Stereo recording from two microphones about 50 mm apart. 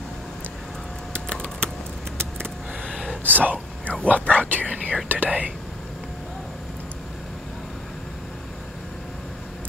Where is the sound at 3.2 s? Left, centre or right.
Right.